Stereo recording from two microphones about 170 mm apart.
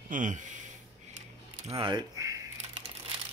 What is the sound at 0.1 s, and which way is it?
Speech, 50° right (ahead or behind).